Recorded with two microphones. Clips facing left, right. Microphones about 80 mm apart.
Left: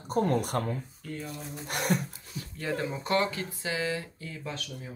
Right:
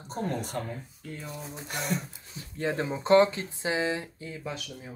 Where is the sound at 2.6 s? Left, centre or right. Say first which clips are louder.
Right 3 dB; right.